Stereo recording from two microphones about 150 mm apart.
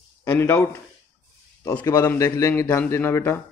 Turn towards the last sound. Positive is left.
turn(degrees=15)  # may be behind; listen again after turning